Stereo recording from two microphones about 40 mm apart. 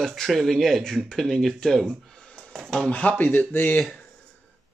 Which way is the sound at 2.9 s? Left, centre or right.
Left.